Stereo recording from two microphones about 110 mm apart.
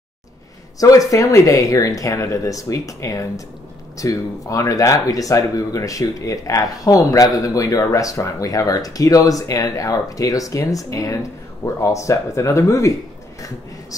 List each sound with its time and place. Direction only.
0.7 s speech: 30° left (ahead or behind)